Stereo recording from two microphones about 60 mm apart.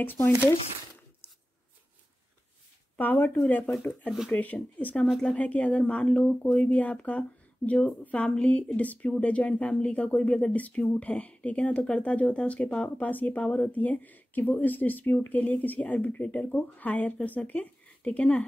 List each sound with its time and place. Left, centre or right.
0.0 s speech: left
3.0 s speech: left